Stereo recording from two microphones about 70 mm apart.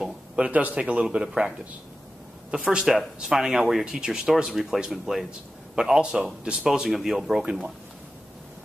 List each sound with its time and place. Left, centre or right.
0.0 s a sound: centre
0.7 s speech: centre
2.5 s speech: centre